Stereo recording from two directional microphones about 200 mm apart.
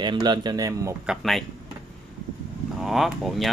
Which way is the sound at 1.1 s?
Centre (ahead or behind).